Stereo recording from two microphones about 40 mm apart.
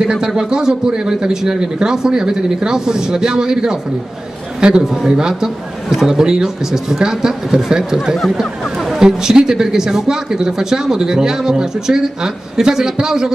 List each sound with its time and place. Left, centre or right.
0.0 s speech: centre